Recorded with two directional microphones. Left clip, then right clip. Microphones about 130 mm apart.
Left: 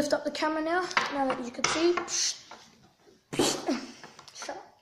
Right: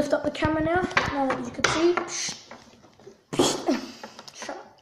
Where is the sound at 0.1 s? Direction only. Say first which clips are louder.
Right 4 dB; 20° left (ahead or behind).